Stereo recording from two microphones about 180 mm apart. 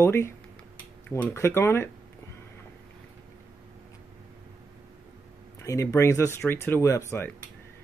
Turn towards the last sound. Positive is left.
turn(degrees=15)  # may be behind; listen again after turning